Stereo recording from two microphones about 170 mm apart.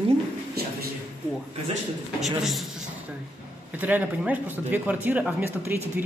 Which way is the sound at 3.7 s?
10° right (ahead or behind).